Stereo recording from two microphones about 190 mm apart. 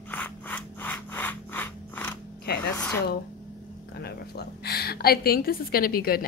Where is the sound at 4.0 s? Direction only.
55° left (ahead or behind).